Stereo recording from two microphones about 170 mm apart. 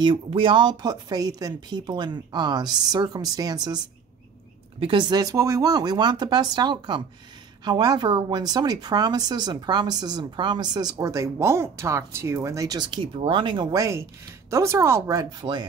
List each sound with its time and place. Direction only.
0.0 s speech: 30° right (ahead or behind)